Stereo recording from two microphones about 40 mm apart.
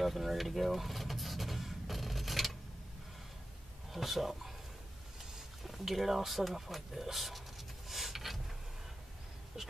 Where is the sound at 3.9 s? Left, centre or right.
Centre.